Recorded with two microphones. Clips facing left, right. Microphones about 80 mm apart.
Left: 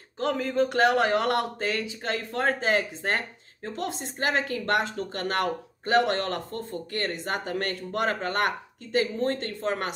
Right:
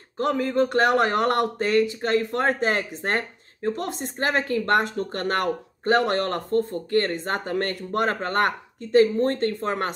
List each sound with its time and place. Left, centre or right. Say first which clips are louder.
0.2 s speech: right 3 dB; right